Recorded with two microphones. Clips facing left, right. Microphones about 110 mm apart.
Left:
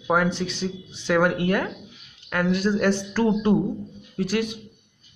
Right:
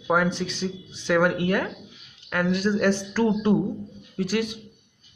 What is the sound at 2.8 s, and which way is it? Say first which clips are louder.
Speech: even; 10° right (ahead or behind).